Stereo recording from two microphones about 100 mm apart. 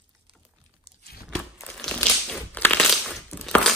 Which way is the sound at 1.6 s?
5° left (ahead or behind).